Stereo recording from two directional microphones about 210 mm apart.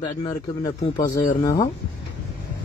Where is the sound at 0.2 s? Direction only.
15° left (ahead or behind).